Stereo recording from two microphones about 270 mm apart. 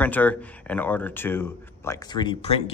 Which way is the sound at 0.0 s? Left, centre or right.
Centre.